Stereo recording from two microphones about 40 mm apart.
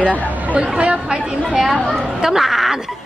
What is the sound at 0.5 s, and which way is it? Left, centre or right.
Speech, right.